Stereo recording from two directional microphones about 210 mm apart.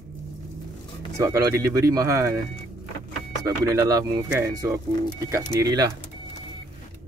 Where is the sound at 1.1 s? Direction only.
15° right (ahead or behind).